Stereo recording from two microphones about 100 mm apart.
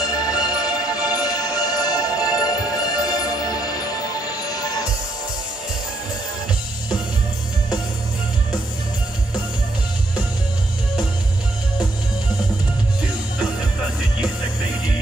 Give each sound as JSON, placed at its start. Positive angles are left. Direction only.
{"t": 0.0, "sound": "music", "side_deg": 40}